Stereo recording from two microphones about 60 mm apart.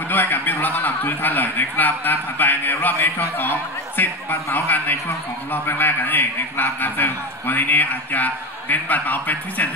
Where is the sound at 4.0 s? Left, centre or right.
Left.